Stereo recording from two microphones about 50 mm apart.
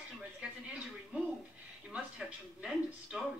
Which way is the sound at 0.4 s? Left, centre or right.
Centre.